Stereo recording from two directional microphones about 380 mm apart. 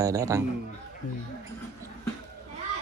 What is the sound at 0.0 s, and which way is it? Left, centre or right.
Speech, centre.